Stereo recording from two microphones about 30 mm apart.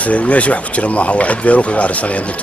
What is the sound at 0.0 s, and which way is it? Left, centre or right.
Speech, left.